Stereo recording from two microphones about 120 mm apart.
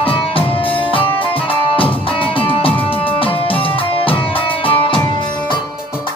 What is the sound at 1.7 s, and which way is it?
Music, 50° left (ahead or behind).